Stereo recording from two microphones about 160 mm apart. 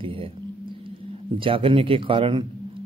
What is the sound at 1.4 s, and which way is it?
A man's voice, 35° right (ahead or behind).